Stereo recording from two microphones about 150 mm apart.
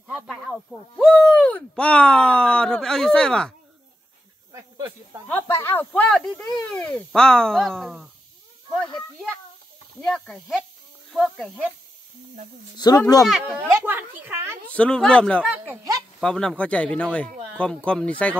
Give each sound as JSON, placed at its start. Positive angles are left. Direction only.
{"t": 0.0, "sound": "speech", "side_deg": -5}
{"t": 4.5, "sound": "snake", "side_deg": -20}
{"t": 5.3, "sound": "speech", "side_deg": 15}
{"t": 10.0, "sound": "speech", "side_deg": 5}
{"t": 12.7, "sound": "speech", "side_deg": 25}
{"t": 13.6, "sound": "speech", "side_deg": -10}
{"t": 14.7, "sound": "speech", "side_deg": 5}
{"t": 15.4, "sound": "speech", "side_deg": -10}
{"t": 16.2, "sound": "speech", "side_deg": 5}